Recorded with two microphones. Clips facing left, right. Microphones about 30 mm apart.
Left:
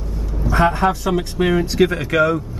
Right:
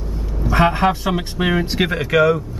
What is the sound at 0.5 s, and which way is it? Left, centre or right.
Speech, right.